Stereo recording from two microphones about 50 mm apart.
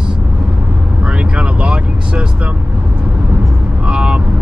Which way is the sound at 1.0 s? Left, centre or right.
Right.